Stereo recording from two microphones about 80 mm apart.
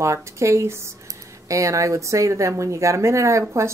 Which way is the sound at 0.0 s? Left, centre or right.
Right.